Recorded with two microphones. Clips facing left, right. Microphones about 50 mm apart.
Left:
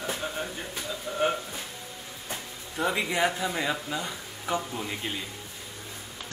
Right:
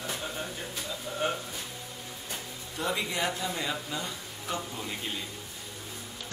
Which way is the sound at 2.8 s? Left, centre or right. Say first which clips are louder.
Left 5 dB; left.